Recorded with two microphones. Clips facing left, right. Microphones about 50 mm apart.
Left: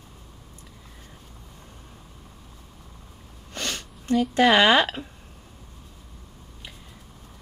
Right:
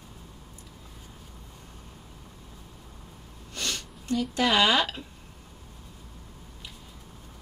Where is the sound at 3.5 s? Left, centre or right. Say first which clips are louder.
Left 2 dB; left.